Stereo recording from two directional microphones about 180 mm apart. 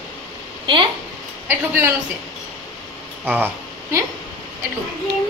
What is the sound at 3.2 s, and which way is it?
Speech, 10° right (ahead or behind).